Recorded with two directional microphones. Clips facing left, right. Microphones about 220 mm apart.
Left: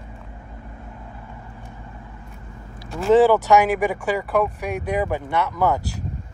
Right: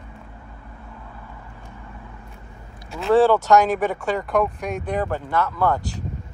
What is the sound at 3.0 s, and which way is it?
Speech, 10° left (ahead or behind).